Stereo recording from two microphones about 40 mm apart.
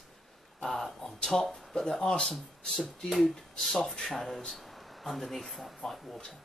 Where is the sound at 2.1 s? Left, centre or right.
Centre.